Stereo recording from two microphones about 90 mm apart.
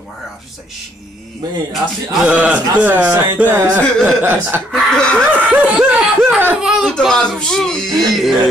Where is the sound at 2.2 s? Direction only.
15° right (ahead or behind).